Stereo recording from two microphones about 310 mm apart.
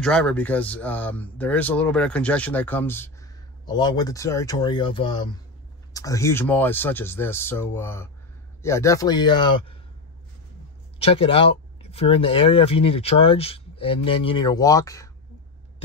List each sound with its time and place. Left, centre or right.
0.0 s speech: centre
11.0 s speech: centre